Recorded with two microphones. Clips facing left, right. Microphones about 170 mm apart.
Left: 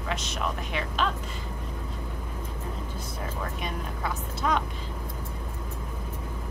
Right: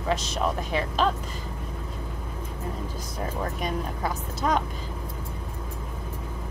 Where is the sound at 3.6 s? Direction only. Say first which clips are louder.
Right 5 dB; 40° right (ahead or behind).